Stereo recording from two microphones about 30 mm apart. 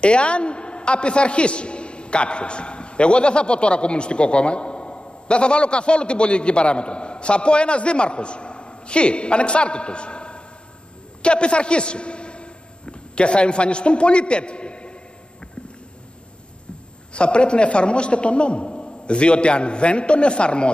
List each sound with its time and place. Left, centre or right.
0.0 s a man's voice: left
17.1 s a man's voice: left